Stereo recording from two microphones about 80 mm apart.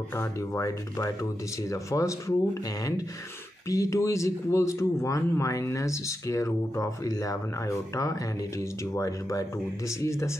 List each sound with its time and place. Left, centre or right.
0.1 s speech: left
3.6 s speech: left